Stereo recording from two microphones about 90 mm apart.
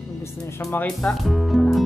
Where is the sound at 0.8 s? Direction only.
5° left (ahead or behind).